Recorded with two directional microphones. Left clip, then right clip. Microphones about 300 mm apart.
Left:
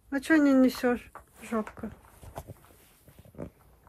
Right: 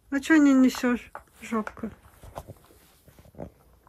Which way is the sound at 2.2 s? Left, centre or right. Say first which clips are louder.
Right 3 dB; centre.